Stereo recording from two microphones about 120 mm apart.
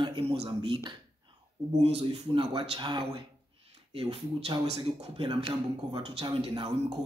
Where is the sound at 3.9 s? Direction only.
50° right (ahead or behind).